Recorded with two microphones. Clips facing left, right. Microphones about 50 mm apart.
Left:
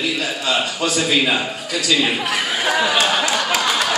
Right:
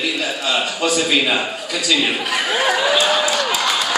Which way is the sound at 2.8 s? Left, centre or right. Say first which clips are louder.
Right 1 dB; centre.